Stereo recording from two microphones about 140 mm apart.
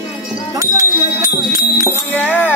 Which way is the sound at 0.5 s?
25° right (ahead or behind).